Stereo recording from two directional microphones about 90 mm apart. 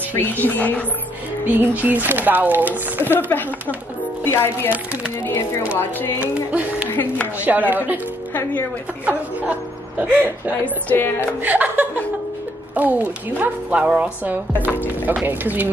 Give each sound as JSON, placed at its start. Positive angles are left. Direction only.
{"t": 0.1, "sound": "a woman's voice", "side_deg": 20}
{"t": 1.5, "sound": "speech", "side_deg": -20}
{"t": 3.2, "sound": "a woman's voice", "side_deg": 20}
{"t": 5.8, "sound": "a woman's voice", "side_deg": 25}
{"t": 6.5, "sound": "speech", "side_deg": -15}
{"t": 6.9, "sound": "music", "side_deg": 20}
{"t": 7.3, "sound": "a sound", "side_deg": -20}
{"t": 9.0, "sound": "speech", "side_deg": -15}
{"t": 10.9, "sound": "a woman's voice", "side_deg": 25}
{"t": 11.4, "sound": "speech", "side_deg": -20}